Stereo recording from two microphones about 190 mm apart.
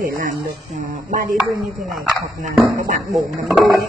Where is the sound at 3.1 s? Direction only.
Centre (ahead or behind).